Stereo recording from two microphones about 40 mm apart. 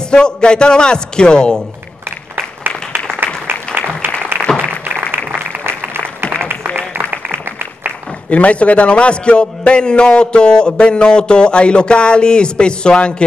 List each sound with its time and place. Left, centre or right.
0.1 s a man's voice: left
3.4 s applause: right
4.6 s music: right
5.9 s a sound: right
7.4 s applause: right
8.3 s a man's voice: left